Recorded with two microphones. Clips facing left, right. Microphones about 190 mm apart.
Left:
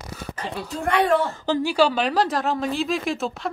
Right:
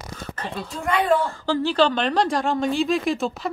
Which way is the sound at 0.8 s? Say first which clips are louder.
Left 2 dB; 70° left (ahead or behind).